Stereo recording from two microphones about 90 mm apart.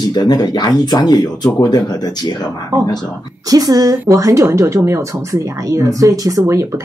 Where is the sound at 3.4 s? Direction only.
45° right (ahead or behind).